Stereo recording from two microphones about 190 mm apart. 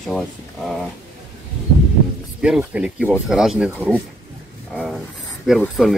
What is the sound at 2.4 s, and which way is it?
Speech, 5° right (ahead or behind).